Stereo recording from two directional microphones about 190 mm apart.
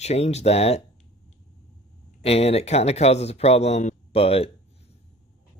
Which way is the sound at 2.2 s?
35° left (ahead or behind).